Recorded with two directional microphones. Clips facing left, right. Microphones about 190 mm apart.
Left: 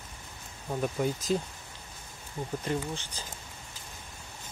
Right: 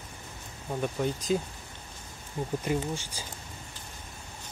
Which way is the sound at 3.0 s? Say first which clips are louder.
Right 1 dB; 10° right (ahead or behind).